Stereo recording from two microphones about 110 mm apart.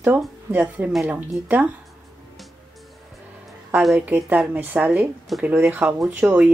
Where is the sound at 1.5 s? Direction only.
15° right (ahead or behind).